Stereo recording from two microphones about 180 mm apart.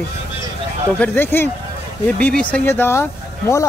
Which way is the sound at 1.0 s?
10° left (ahead or behind).